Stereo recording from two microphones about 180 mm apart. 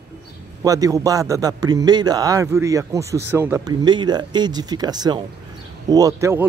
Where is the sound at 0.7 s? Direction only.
20° right (ahead or behind).